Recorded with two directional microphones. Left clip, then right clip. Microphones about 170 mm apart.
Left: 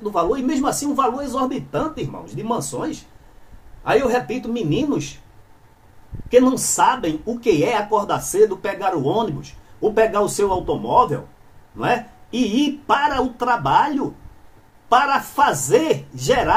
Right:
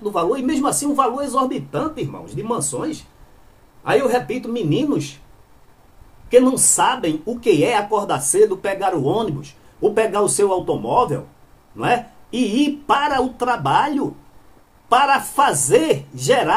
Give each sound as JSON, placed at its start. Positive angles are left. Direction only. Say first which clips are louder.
{"t": 0.0, "sound": "speech", "louder": "even", "side_deg": -10}
{"t": 6.3, "sound": "speech", "louder": "right 1 dB", "side_deg": -5}